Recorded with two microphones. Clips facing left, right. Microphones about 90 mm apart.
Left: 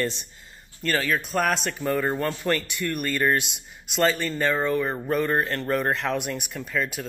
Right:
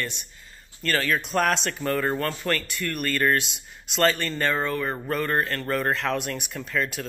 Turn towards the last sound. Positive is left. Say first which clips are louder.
# even
turn(degrees=5)  # may be behind; listen again after turning